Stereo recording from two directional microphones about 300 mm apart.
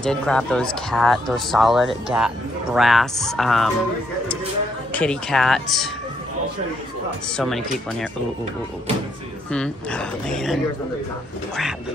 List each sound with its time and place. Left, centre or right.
0.0 s speech: centre
4.9 s speech: centre
7.3 s speech: centre
9.5 s speech: centre